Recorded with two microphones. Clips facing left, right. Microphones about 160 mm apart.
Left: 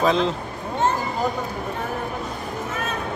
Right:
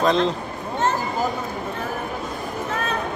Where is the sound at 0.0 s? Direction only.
5° left (ahead or behind).